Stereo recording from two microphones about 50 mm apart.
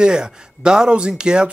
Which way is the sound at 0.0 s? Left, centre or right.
Centre.